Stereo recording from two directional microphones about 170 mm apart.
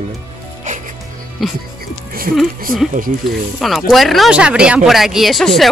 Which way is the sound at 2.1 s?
60° right (ahead or behind).